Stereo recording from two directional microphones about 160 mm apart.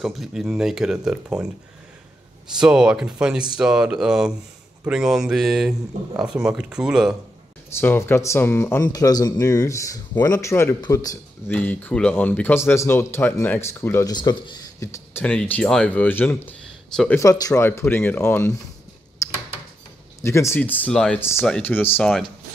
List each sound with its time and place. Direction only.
0.0 s speech: centre (ahead or behind)
2.5 s speech: 5° right (ahead or behind)
7.7 s speech: 15° left (ahead or behind)
11.4 s speech: 10° left (ahead or behind)
14.1 s speech: 30° left (ahead or behind)
14.8 s speech: 15° left (ahead or behind)
17.2 s speech: 20° left (ahead or behind)
19.2 s a sound: 15° left (ahead or behind)
20.2 s speech: 15° left (ahead or behind)
21.2 s speech: 15° left (ahead or behind)